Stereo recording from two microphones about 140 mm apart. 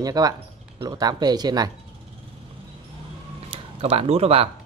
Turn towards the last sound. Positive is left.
turn(degrees=-45)  # may be behind; listen again after turning